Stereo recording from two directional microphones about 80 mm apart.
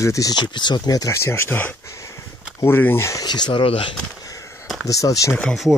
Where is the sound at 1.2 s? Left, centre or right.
Left.